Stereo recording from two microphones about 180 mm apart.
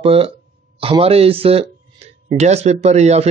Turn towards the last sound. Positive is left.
turn(degrees=-35)  # may be behind; listen again after turning